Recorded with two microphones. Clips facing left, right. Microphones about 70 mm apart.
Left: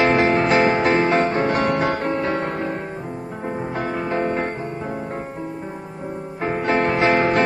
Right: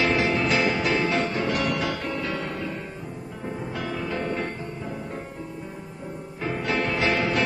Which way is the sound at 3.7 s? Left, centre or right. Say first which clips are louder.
Left 7 dB; left.